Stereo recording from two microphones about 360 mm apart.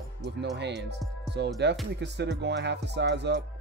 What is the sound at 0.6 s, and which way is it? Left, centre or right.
Speech, right.